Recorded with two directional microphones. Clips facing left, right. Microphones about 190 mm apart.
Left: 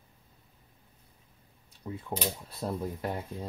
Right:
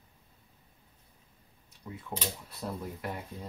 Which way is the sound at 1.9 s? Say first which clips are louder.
Left 4 dB; 30° left (ahead or behind).